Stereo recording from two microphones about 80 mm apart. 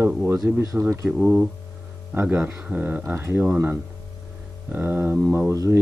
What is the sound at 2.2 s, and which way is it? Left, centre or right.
Speech, right.